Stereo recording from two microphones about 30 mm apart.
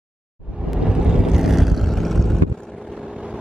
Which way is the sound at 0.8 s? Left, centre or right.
Right.